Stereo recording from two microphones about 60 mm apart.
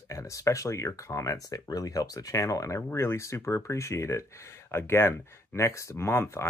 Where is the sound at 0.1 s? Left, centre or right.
Left.